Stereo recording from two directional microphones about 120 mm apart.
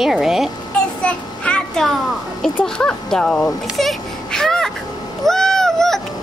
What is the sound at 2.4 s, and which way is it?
Speech, 5° left (ahead or behind).